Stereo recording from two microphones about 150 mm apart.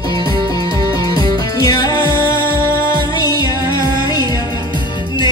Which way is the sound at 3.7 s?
25° left (ahead or behind).